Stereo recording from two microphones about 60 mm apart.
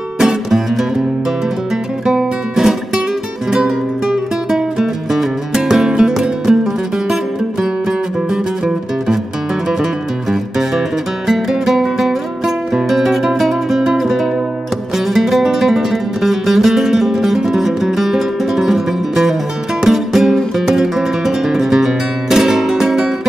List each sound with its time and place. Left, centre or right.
0.2 s music: centre
2.0 s music: centre
8.6 s music: centre
11.2 s music: centre